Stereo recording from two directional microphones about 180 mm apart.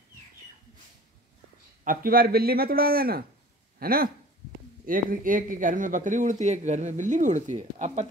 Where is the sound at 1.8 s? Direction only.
50° right (ahead or behind).